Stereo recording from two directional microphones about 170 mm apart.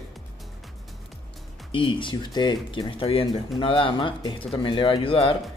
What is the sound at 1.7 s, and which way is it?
Speech, 30° left (ahead or behind).